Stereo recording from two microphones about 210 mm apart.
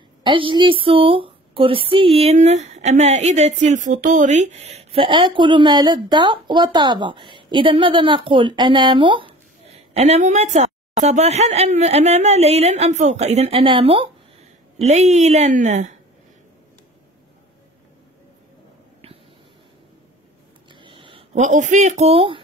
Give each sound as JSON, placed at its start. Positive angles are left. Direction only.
{"t": 0.2, "sound": "a woman's voice", "side_deg": -25}
{"t": 20.7, "sound": "a sound", "side_deg": -25}
{"t": 21.5, "sound": "a woman's voice", "side_deg": -35}